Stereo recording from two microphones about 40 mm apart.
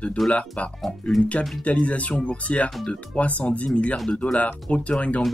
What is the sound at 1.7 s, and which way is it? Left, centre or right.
Speech, left.